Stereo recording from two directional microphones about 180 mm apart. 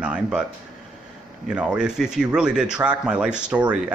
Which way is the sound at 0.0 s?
5° right (ahead or behind).